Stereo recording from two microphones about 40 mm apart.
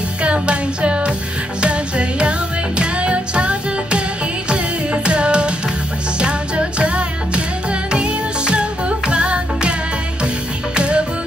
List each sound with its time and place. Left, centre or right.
0.2 s music: right